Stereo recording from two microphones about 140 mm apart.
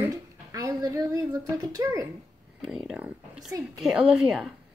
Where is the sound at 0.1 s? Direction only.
25° right (ahead or behind).